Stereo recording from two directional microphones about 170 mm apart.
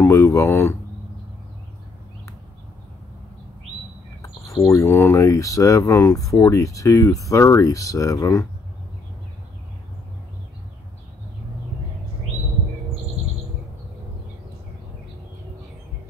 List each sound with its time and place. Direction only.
0.0 s speech: 15° left (ahead or behind)
4.2 s speech: 20° left (ahead or behind)